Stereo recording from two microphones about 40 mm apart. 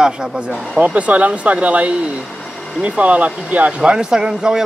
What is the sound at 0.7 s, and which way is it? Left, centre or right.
Speech, right.